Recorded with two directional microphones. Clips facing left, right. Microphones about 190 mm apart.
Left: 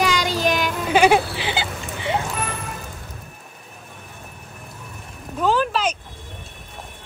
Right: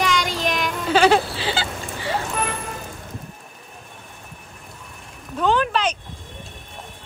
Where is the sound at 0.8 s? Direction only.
15° left (ahead or behind).